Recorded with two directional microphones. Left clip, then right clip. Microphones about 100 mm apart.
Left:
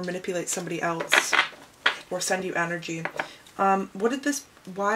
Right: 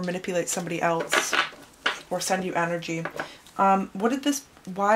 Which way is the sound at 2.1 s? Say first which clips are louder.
Right 1 dB; 25° right (ahead or behind).